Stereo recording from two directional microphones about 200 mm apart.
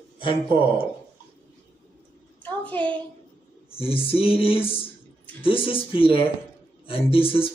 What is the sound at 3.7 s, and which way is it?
Speech, 30° left (ahead or behind).